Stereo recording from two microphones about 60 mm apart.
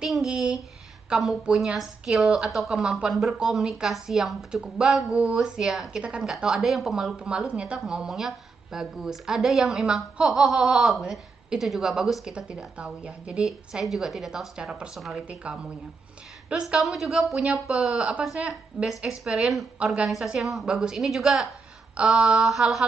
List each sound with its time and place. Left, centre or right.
0.0 s a sound: centre
1.1 s speech: centre
3.1 s a woman's voice: centre
5.1 s speech: centre
5.6 s a woman's voice: centre
12.3 s speech: centre
13.4 s a woman's voice: centre
15.0 s a woman's voice: centre
16.5 s a woman's voice: right
16.8 s a woman's voice: centre
17.4 s a woman's voice: centre